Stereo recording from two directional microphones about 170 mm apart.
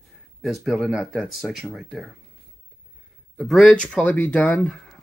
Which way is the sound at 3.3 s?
Centre (ahead or behind).